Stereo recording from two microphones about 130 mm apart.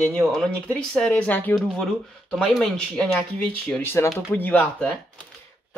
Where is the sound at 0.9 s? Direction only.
10° left (ahead or behind).